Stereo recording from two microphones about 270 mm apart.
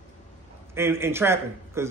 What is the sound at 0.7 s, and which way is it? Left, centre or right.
A man's voice, centre.